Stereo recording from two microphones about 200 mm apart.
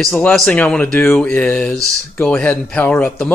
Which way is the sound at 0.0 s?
5° left (ahead or behind).